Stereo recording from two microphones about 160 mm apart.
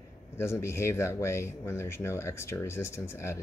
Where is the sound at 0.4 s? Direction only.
15° left (ahead or behind).